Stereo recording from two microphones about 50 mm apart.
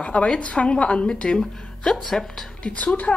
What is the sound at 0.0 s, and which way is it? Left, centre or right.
A woman's voice, left.